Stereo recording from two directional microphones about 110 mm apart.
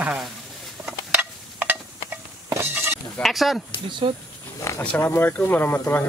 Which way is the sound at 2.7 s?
20° right (ahead or behind).